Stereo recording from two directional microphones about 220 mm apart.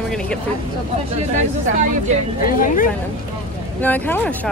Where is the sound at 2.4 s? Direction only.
40° left (ahead or behind).